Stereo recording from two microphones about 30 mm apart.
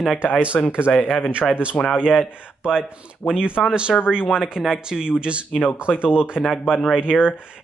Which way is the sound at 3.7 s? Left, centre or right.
Right.